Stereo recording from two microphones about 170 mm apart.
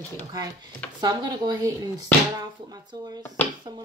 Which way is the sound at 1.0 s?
25° right (ahead or behind).